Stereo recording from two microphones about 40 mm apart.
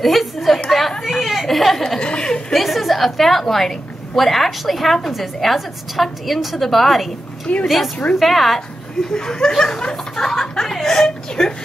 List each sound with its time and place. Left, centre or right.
0.0 s a sound: centre
0.7 s chatter: centre
1.0 s whimper: centre
2.0 s a woman's voice: left
2.5 s a woman's voice: centre
9.1 s speech: centre